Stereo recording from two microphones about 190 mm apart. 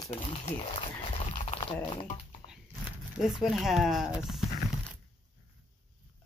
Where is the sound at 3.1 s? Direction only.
Centre (ahead or behind).